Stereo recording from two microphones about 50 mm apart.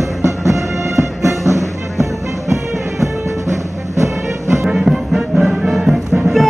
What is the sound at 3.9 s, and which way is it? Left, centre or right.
Music, right.